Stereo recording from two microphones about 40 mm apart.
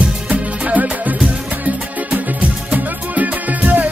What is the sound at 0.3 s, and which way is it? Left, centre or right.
Music, right.